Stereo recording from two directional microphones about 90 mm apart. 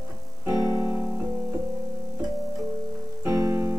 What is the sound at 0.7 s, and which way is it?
Music, 35° right (ahead or behind).